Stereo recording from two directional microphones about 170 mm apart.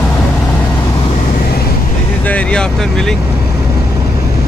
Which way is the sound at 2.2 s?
10° left (ahead or behind).